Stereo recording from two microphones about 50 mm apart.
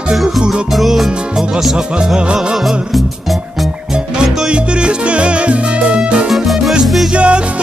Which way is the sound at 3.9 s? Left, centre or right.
Centre.